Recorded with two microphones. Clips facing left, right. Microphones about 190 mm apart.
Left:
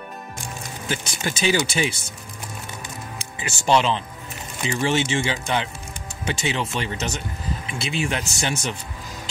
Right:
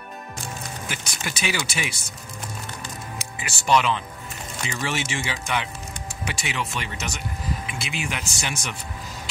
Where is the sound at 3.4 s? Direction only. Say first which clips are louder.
Left 2 dB; 30° left (ahead or behind).